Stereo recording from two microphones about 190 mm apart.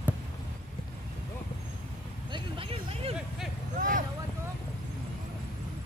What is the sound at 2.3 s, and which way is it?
Vehicle, 30° right (ahead or behind).